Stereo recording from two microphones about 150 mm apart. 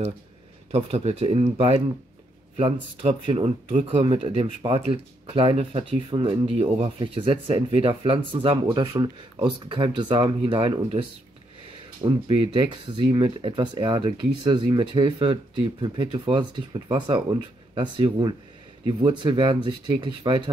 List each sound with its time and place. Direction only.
0.7 s speech: 45° right (ahead or behind)
12.0 s speech: 30° right (ahead or behind)